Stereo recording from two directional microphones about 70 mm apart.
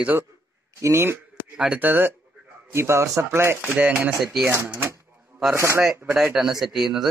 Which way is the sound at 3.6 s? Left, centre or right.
Right.